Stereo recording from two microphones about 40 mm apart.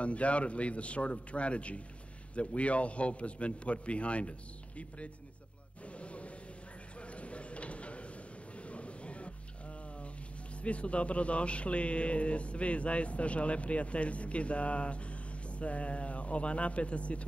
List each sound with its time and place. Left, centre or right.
0.0 s a man's voice: left
5.9 s a sound: left
10.6 s a man's voice: left